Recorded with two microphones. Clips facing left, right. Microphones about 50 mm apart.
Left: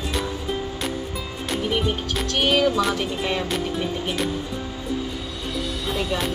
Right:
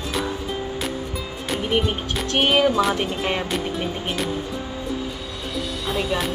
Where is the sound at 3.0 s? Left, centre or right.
Right.